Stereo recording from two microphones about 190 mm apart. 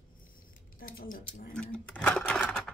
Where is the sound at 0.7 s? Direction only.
50° left (ahead or behind).